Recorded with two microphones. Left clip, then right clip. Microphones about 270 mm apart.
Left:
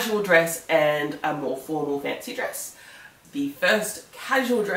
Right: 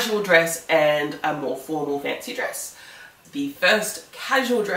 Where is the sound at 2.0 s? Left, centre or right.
Centre.